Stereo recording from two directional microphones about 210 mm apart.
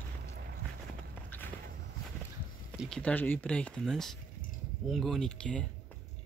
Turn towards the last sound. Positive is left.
turn(degrees=5)  # may be behind; listen again after turning